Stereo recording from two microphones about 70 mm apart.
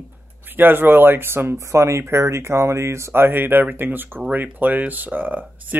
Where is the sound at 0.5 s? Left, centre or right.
Right.